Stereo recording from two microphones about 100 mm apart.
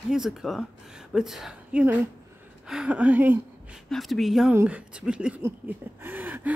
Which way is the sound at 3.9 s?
Centre (ahead or behind).